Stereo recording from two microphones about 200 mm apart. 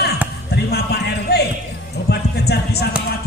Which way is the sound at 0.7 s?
55° left (ahead or behind).